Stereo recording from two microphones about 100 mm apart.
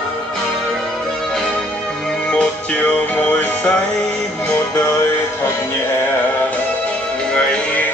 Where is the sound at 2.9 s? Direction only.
15° left (ahead or behind).